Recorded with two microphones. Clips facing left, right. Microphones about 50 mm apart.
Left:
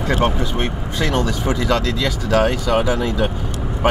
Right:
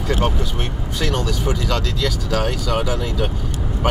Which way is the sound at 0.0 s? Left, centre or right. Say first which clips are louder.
Left 3 dB; left.